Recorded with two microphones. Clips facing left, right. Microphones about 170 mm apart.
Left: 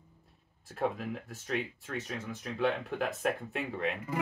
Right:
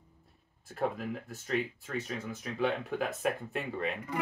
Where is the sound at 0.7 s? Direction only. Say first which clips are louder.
Even; centre (ahead or behind).